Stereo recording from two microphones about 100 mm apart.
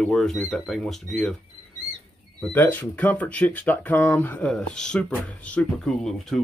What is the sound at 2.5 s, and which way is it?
Speech, 20° left (ahead or behind).